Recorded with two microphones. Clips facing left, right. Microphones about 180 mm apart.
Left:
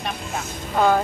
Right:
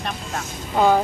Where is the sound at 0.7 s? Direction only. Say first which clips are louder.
Right 1 dB; 10° right (ahead or behind).